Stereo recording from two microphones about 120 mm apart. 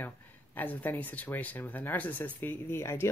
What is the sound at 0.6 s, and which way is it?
Speech, 15° left (ahead or behind).